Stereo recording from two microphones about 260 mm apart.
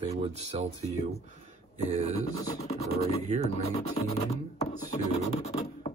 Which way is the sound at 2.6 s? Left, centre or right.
Left.